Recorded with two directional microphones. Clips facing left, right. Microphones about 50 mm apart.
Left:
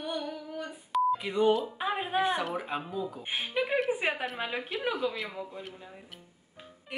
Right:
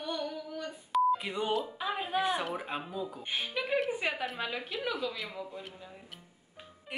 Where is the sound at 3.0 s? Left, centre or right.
Centre.